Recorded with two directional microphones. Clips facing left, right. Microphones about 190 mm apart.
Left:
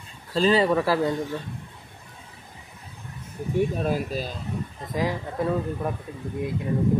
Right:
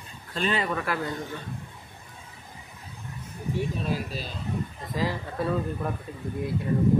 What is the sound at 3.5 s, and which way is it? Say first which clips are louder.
Speech: left 6 dB; 50° left (ahead or behind).